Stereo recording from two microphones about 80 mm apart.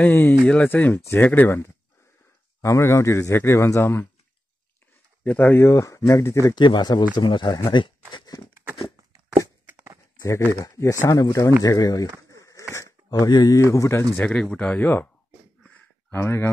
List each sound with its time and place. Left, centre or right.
0.0 s speech: left
2.6 s a man's voice: left
5.2 s speech: left
5.6 s a man's voice: left
6.5 s speech: left
7.2 s speech: left
10.7 s a man's voice: left
12.3 s a sound: left
13.5 s a man's voice: left
14.1 s speech: centre
16.1 s speech: left